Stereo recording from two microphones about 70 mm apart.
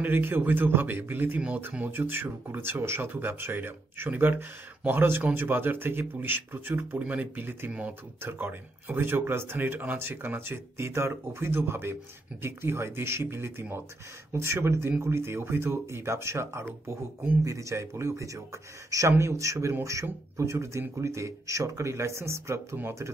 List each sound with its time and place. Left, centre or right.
0.0 s a man's voice: right